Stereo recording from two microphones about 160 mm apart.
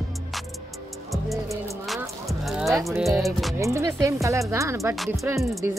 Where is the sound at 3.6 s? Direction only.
15° right (ahead or behind).